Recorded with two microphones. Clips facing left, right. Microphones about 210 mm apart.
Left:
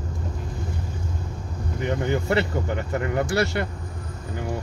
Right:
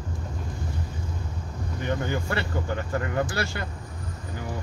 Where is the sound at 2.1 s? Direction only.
25° left (ahead or behind).